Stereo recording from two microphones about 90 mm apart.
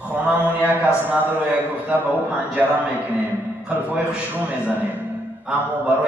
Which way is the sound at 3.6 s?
15° right (ahead or behind).